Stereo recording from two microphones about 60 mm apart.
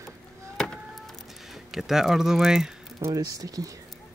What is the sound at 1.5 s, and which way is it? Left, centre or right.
Speech, centre.